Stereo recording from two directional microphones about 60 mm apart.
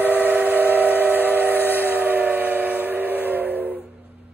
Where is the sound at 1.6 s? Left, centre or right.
Left.